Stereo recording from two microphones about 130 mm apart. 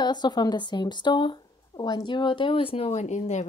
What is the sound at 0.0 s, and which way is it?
A woman's voice, 35° left (ahead or behind).